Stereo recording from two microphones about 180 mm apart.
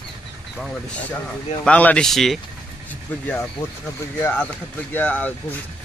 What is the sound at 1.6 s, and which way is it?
Speech, 10° left (ahead or behind).